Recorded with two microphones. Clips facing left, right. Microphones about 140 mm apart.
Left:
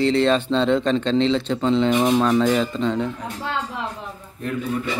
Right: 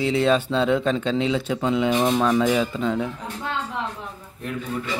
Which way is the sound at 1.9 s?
5° left (ahead or behind).